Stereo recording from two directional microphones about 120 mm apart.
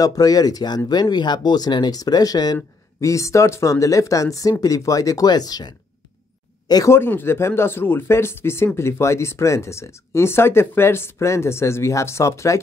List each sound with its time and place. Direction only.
0.0 s speech: 30° left (ahead or behind)
7.0 s speech: 20° left (ahead or behind)